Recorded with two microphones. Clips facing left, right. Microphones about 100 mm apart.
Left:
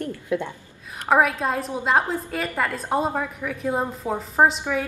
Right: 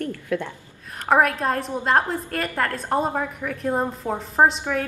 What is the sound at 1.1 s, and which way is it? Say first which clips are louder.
A woman's voice: right 1 dB; centre (ahead or behind).